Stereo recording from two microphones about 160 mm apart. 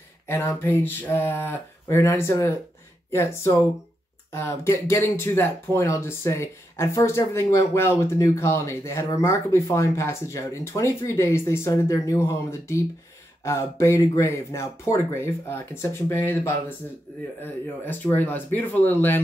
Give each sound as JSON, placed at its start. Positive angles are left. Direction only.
{"t": 0.3, "sound": "speech", "side_deg": 15}